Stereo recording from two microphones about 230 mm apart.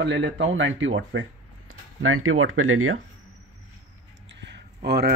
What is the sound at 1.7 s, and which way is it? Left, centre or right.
Speech, right.